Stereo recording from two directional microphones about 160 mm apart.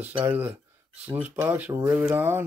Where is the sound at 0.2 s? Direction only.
10° right (ahead or behind).